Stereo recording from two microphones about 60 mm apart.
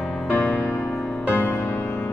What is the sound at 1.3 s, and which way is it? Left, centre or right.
Music, left.